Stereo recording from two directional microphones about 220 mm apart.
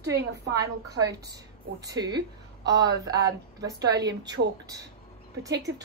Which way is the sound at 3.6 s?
50° right (ahead or behind).